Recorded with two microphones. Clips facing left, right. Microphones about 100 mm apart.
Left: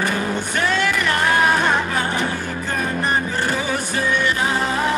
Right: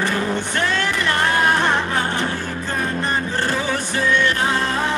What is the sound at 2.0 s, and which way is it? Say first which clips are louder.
Music: even; 15° left (ahead or behind).